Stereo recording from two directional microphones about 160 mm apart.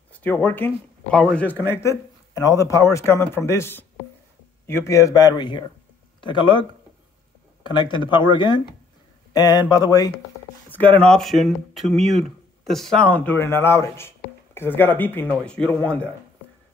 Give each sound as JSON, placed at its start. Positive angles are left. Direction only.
{"t": 0.1, "sound": "speech", "side_deg": 10}
{"t": 1.7, "sound": "speech", "side_deg": 20}
{"t": 7.6, "sound": "speech", "side_deg": 30}
{"t": 11.0, "sound": "speech", "side_deg": 5}